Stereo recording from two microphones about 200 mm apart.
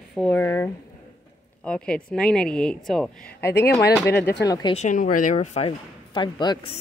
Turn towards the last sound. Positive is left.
turn(degrees=25)  # may be behind; listen again after turning